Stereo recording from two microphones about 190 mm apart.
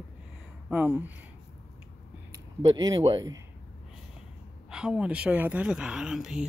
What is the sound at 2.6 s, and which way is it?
Speech, 20° right (ahead or behind).